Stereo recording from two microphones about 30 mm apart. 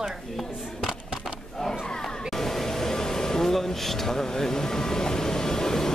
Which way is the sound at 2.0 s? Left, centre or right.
Centre.